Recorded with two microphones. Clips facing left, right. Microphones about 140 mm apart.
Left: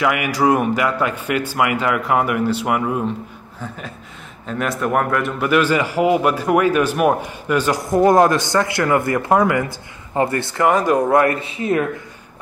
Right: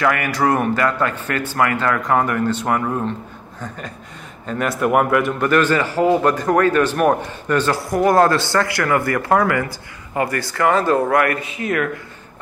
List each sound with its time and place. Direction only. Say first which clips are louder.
0.0 s a man's voice: left 1 dB; 10° left (ahead or behind); by 11.9 s 25° left (ahead or behind)